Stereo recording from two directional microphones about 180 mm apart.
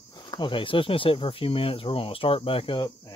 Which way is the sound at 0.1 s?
25° left (ahead or behind).